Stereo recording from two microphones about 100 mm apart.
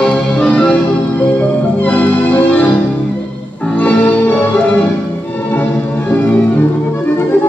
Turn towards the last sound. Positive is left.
turn(degrees=15)  # may be behind; listen again after turning